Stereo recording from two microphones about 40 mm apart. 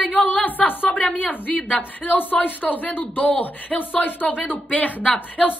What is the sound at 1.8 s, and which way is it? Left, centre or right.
A woman's voice, left.